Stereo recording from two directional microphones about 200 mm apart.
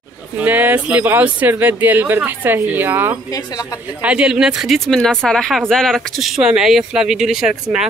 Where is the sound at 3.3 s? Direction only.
20° left (ahead or behind).